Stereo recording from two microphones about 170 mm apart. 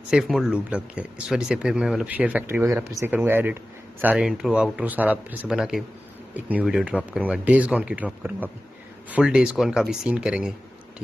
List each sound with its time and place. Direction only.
0.1 s speech: centre (ahead or behind)